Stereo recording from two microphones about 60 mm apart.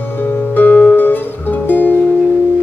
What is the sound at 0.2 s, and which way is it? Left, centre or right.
Music, left.